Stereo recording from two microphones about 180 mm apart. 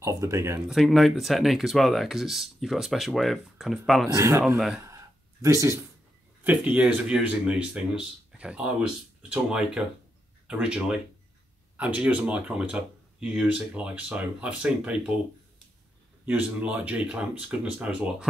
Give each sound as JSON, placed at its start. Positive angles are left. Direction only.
{"t": 0.0, "sound": "speech", "side_deg": -15}
{"t": 0.7, "sound": "speech", "side_deg": 0}
{"t": 4.1, "sound": "speech", "side_deg": -15}
{"t": 4.8, "sound": "a sound", "side_deg": -15}
{"t": 6.4, "sound": "speech", "side_deg": -10}
{"t": 16.3, "sound": "speech", "side_deg": -10}